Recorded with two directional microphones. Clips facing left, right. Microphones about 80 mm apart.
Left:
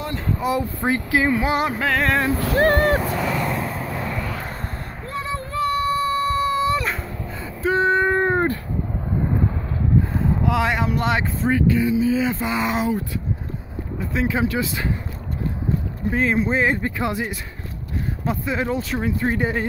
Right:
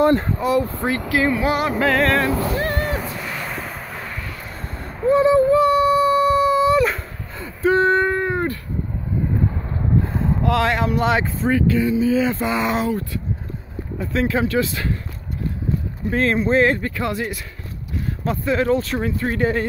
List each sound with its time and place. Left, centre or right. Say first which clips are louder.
0.0 s speech: right 13 dB; right
0.4 s speech: right 3 dB; centre
1.8 s speech: right 3 dB; centre
2.5 s speech: left 6 dB; left
5.0 s a sound: right 15 dB; centre
8.1 s a sound: left 2 dB; left
10.0 s speech: right 1 dB; centre
13.9 s speech: right 2 dB; centre
16.1 s speech: right 2 dB; centre
16.8 s speech: even; centre